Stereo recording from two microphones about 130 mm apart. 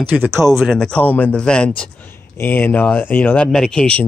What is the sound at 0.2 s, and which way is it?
Speech, 20° right (ahead or behind).